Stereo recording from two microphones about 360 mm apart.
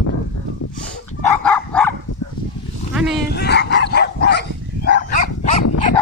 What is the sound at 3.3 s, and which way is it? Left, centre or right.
Dog, left.